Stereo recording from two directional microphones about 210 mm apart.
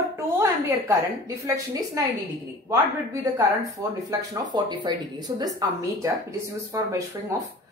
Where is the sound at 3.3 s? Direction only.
15° right (ahead or behind).